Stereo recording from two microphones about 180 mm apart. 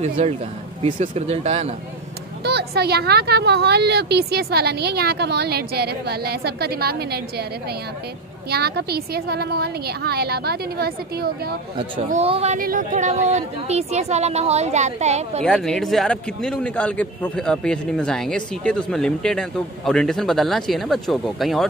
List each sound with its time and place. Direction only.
0.9 s speech: 40° right (ahead or behind)
2.4 s speech: 65° right (ahead or behind)
8.5 s speech: 60° right (ahead or behind)
12.1 s speech: 35° right (ahead or behind)
12.5 s speech: 50° right (ahead or behind)
15.4 s a man's voice: 5° left (ahead or behind)